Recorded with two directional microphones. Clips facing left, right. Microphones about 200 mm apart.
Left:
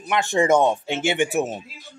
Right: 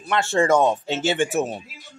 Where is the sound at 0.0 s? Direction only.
15° left (ahead or behind).